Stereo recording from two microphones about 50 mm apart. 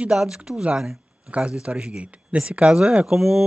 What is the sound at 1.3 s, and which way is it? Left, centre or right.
Speech, right.